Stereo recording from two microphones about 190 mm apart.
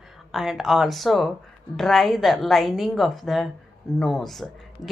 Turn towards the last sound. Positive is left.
turn(degrees=0)  # may be behind; listen again after turning